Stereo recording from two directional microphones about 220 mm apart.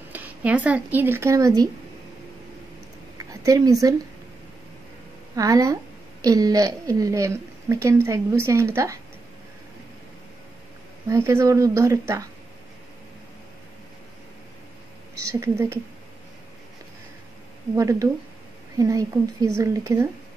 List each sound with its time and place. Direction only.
0.1 s speech: 5° right (ahead or behind)
3.2 s a sound: 15° right (ahead or behind)
5.3 s a woman's voice: 15° right (ahead or behind)
11.1 s a woman's voice: 10° right (ahead or behind)
15.4 s a woman's voice: 10° right (ahead or behind)
17.7 s a woman's voice: 15° right (ahead or behind)